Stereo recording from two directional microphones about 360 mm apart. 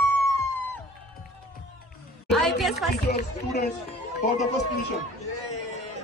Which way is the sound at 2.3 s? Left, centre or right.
Centre.